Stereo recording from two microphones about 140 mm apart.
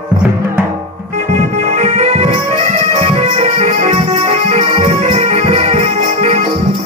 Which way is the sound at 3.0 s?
50° right (ahead or behind).